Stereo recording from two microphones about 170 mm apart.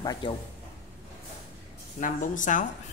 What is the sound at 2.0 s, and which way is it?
Speech, 50° left (ahead or behind).